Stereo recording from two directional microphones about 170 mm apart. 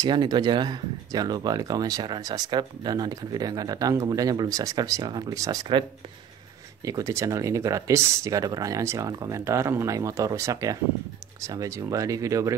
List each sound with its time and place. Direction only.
0.0 s speech: 25° right (ahead or behind)